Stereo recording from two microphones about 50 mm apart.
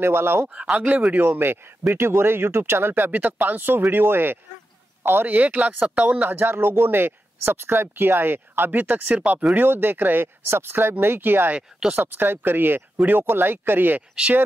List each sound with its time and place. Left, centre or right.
0.0 s speech: right
0.7 s speech: right
1.4 s speech: right
2.9 s a man's voice: right
5.3 s speech: right
9.1 s speech: right
9.6 s speech: right